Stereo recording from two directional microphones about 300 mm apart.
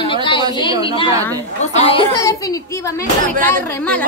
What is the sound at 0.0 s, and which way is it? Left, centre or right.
Chatter, centre.